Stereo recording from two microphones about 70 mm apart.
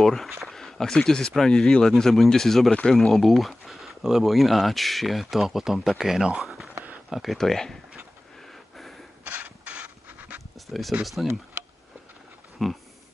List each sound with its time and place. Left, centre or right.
0.0 s speech: centre
6.7 s a sound: right
7.1 s speech: centre
8.4 s a sound: centre
9.2 s mechanisms: right
10.7 s speech: centre
12.6 s speech: centre